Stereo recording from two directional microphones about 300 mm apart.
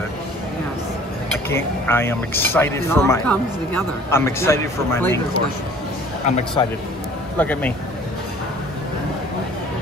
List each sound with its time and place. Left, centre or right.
1.5 s speech: centre
6.2 s speech: left
7.3 s speech: centre